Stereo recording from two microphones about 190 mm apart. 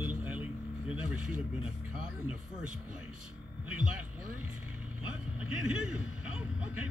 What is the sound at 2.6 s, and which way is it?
Speech, 45° right (ahead or behind).